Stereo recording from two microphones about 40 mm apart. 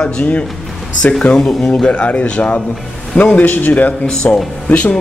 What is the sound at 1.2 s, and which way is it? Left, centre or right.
Speech, centre.